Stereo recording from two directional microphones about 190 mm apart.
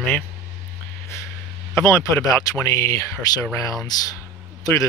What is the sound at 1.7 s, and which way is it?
Speech, 15° left (ahead or behind).